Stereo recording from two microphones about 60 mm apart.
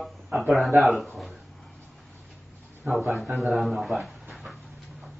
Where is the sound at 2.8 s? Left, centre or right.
Right.